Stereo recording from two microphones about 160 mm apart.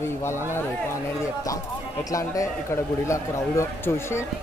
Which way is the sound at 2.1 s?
20° left (ahead or behind).